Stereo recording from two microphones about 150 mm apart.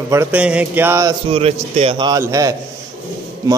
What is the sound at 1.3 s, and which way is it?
Speech, 40° right (ahead or behind).